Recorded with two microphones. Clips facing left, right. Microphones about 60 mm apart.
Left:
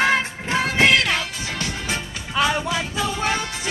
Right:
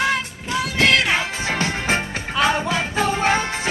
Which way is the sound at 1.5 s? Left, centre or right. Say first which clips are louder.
Right 8 dB; right.